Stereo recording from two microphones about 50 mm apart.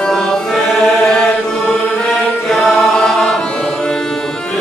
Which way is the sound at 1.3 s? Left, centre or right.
Left.